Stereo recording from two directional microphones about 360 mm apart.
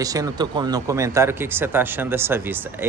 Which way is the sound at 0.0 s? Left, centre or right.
Centre.